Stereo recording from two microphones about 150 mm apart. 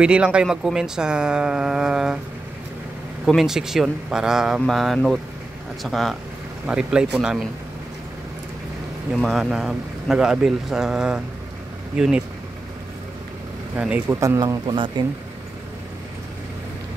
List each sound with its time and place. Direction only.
0.0 s speech: 5° right (ahead or behind)
3.3 s speech: centre (ahead or behind)
9.2 s speech: centre (ahead or behind)
13.7 s speech: 5° right (ahead or behind)
14.0 s speech: 20° right (ahead or behind)